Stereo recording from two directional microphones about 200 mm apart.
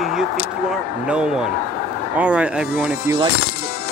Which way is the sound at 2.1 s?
5° right (ahead or behind).